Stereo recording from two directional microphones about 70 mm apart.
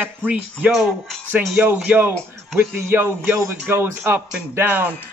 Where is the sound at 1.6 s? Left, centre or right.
Right.